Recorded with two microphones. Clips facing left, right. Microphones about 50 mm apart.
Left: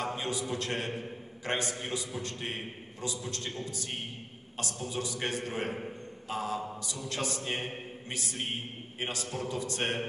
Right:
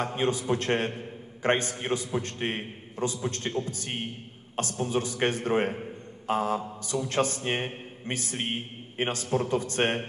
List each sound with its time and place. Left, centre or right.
0.0 s a man's voice: right